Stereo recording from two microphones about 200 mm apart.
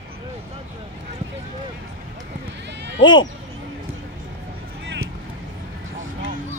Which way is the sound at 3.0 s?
20° left (ahead or behind).